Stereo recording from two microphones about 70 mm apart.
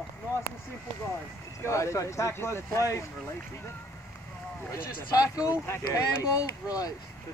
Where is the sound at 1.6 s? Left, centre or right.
Left.